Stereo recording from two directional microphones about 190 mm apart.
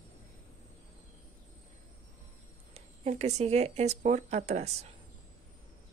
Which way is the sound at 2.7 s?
35° right (ahead or behind).